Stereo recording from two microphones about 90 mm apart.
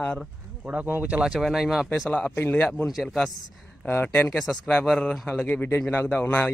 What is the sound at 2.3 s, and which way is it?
Speech, 20° left (ahead or behind).